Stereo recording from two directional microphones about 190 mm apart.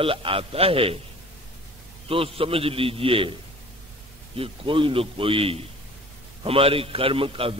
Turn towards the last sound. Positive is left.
turn(degrees=-30)  # may be behind; listen again after turning